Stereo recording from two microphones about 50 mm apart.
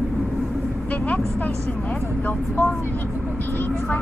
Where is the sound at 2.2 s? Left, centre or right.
Left.